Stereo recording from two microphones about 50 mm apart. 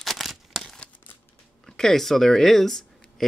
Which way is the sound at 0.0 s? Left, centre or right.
Centre.